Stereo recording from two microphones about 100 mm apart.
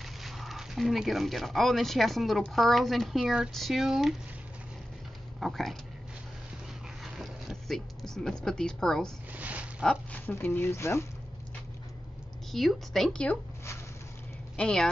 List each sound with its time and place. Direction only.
0.0 s speech: centre (ahead or behind)
5.4 s speech: centre (ahead or behind)
7.0 s speech: centre (ahead or behind)
9.3 s a sound: 15° right (ahead or behind)
10.1 s speech: 15° left (ahead or behind)
12.4 s speech: centre (ahead or behind)
14.6 s speech: 5° left (ahead or behind)